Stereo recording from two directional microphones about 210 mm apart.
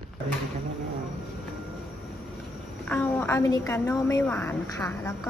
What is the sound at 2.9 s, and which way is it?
A woman's voice, 10° left (ahead or behind).